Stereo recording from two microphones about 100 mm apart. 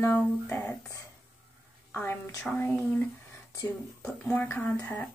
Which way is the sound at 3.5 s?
25° left (ahead or behind).